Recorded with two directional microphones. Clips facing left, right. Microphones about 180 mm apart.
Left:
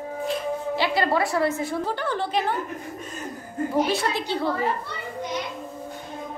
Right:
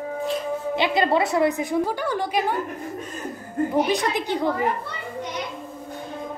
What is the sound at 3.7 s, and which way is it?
Speech, 15° right (ahead or behind).